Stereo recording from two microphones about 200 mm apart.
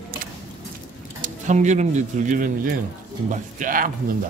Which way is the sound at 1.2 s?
35° right (ahead or behind).